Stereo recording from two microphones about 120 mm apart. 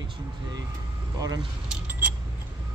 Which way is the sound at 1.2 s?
30° right (ahead or behind).